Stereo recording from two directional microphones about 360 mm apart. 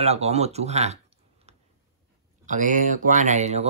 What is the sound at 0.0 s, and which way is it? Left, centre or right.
Speech, centre.